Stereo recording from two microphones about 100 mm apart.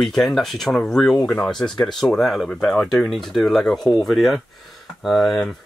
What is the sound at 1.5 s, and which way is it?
Speech, 5° left (ahead or behind).